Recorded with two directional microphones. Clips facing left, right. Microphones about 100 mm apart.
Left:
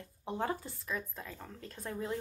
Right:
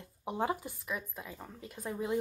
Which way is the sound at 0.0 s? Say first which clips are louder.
Right 2 dB; 15° right (ahead or behind).